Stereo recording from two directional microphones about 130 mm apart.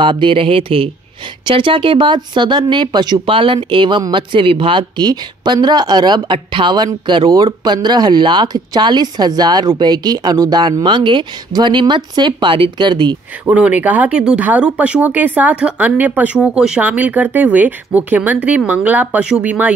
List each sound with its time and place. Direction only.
0.0 s a woman's voice: 40° right (ahead or behind)
13.5 s speech: 10° right (ahead or behind)